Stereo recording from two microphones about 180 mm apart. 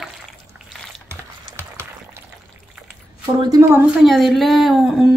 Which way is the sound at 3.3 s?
20° right (ahead or behind).